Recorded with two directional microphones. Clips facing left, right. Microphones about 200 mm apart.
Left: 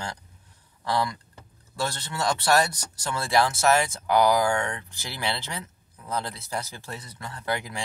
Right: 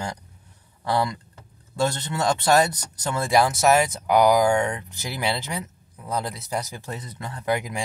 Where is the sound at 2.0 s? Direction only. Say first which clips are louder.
Right 4 dB; 20° right (ahead or behind).